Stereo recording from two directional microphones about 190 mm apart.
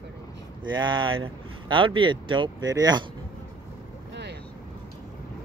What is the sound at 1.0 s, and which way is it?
Speech, 90° right.